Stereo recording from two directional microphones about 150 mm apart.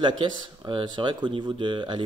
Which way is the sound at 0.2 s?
30° right (ahead or behind).